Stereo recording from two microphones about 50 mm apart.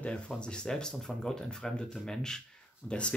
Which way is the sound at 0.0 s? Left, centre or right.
Left.